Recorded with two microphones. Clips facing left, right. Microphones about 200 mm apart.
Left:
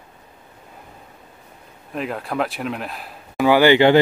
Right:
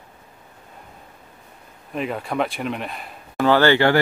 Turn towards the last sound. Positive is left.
turn(degrees=15)  # may be behind; listen again after turning